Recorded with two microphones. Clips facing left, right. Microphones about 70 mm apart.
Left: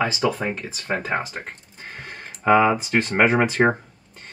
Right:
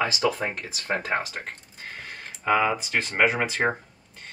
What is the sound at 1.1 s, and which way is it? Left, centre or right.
Speech, centre.